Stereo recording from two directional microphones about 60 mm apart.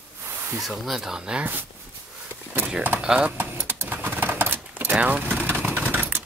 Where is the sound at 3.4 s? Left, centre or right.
Right.